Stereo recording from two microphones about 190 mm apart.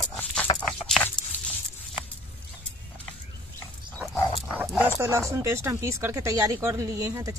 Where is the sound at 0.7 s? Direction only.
Centre (ahead or behind).